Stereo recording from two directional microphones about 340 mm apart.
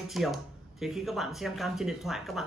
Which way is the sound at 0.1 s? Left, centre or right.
Centre.